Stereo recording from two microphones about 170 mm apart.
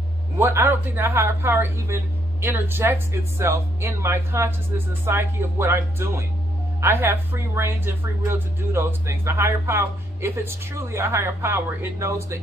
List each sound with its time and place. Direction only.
0.4 s speech: 15° right (ahead or behind)